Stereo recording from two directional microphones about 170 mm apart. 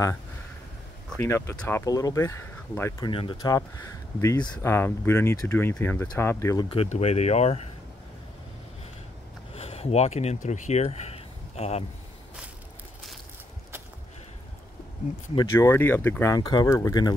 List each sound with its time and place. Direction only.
1.2 s speech: 15° left (ahead or behind)
3.1 s speech: 30° left (ahead or behind)
9.5 s speech: 35° left (ahead or behind)
15.5 s speech: 15° left (ahead or behind)